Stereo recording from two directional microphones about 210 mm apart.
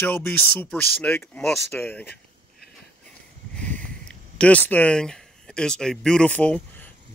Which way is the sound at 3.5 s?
5° left (ahead or behind).